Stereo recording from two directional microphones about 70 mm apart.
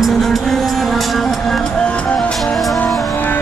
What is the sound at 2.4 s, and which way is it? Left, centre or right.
Music, centre.